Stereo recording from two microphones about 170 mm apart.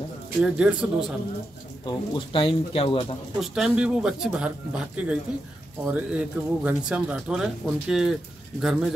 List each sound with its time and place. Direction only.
0.4 s a man's voice: 5° right (ahead or behind)
1.9 s speech: 30° left (ahead or behind)
3.3 s a man's voice: centre (ahead or behind)